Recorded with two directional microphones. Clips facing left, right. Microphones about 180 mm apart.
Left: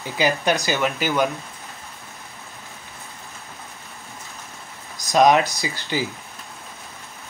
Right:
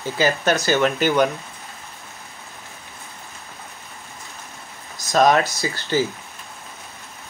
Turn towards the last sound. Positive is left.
turn(degrees=15)  # may be behind; listen again after turning